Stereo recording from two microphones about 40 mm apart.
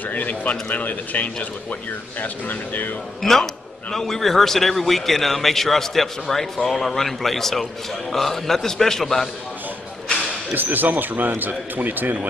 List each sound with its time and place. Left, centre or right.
0.1 s speech: left
3.2 s a man's voice: centre
10.5 s speech: right